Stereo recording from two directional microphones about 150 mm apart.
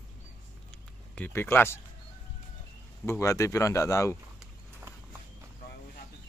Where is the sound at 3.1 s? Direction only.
20° left (ahead or behind).